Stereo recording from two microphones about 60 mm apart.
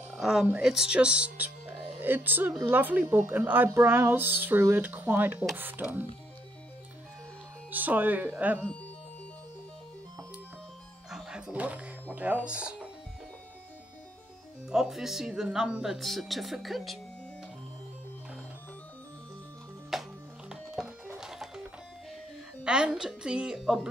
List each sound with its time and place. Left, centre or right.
0.2 s speech: centre; by 6.0 s right
7.7 s speech: right
11.1 s music: centre
11.5 s speech: right
14.7 s speech: centre
19.9 s music: centre
22.6 s a woman's voice: centre